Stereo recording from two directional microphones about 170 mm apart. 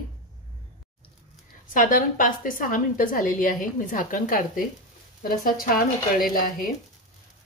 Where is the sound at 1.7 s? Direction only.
50° left (ahead or behind).